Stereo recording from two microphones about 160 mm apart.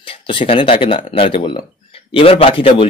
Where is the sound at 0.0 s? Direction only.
35° left (ahead or behind).